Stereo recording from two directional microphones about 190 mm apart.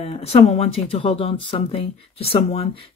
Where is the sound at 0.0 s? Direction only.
30° left (ahead or behind).